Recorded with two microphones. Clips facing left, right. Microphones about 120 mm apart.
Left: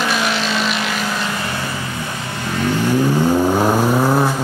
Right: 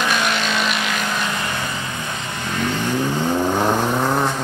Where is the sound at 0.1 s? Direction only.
Centre (ahead or behind).